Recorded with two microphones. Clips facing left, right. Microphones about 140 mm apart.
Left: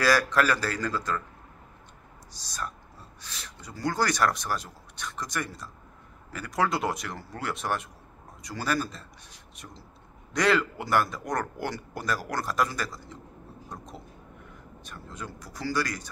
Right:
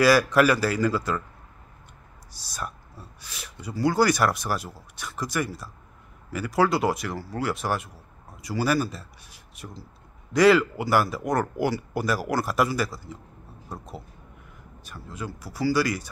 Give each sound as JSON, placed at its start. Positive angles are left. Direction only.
{"t": 0.0, "sound": "speech", "side_deg": -10}
{"t": 2.4, "sound": "speech", "side_deg": -10}